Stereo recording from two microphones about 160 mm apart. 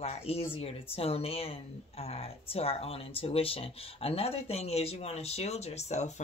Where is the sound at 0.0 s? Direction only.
40° left (ahead or behind).